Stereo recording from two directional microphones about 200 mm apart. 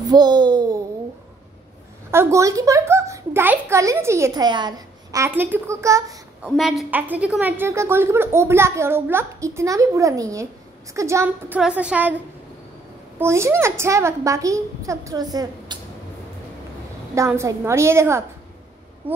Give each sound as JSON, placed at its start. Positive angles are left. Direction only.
{"t": 0.0, "sound": "a sound", "side_deg": -20}
{"t": 2.0, "sound": "a woman's voice", "side_deg": -15}
{"t": 6.5, "sound": "a woman's voice", "side_deg": 0}
{"t": 13.2, "sound": "a woman's voice", "side_deg": -15}
{"t": 15.7, "sound": "a sound", "side_deg": -20}
{"t": 17.1, "sound": "a woman's voice", "side_deg": -15}
{"t": 19.0, "sound": "speech", "side_deg": -25}